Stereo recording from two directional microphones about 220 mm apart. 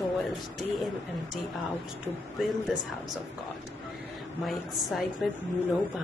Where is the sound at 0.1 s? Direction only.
Centre (ahead or behind).